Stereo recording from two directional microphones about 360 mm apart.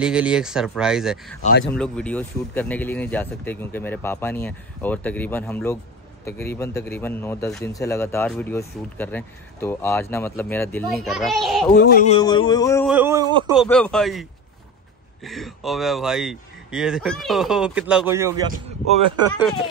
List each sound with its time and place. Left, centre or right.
0.0 s a man's voice: centre
11.7 s speech: left
12.2 s a man's voice: centre
12.9 s a man's voice: centre
13.6 s speech: centre
15.2 s speech: centre